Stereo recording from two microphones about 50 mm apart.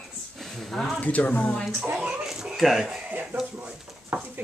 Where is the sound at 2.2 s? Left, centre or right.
Centre.